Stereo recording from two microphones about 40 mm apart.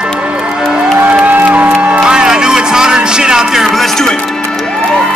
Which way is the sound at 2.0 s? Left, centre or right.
Centre.